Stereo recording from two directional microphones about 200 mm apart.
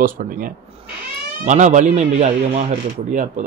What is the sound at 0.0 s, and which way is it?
Speech, 40° right (ahead or behind).